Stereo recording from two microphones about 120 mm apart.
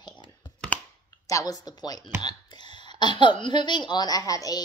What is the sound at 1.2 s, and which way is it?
A woman's voice, 30° left (ahead or behind).